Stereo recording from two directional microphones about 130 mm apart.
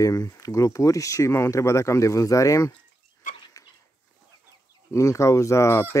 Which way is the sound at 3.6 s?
25° left (ahead or behind).